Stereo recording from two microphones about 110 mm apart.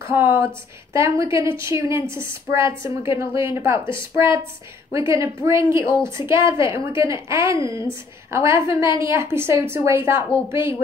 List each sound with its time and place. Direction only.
0.0 s a woman's voice: 20° right (ahead or behind)